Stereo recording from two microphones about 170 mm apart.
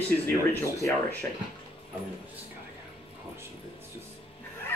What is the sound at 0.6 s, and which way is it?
Speech, 15° left (ahead or behind).